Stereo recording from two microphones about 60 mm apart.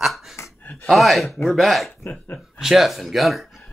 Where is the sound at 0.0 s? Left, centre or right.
Centre.